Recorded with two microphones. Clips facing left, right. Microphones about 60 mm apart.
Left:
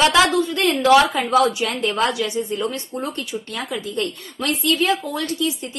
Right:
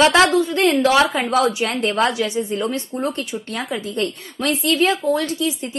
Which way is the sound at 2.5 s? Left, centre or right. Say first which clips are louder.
Right 2 dB; centre.